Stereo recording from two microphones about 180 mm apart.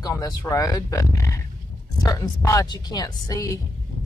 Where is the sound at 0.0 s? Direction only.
20° left (ahead or behind).